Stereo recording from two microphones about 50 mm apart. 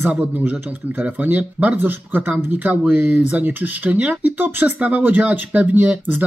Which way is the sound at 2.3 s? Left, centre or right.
Right.